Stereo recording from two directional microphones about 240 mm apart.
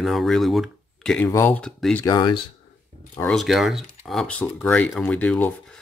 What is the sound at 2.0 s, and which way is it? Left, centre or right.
Speech, centre.